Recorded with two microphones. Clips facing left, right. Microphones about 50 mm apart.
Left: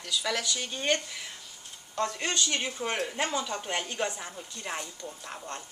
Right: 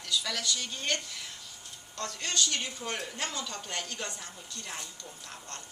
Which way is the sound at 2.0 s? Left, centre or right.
Left.